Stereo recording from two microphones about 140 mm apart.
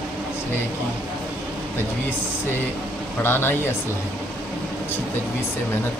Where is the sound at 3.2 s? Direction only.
15° left (ahead or behind).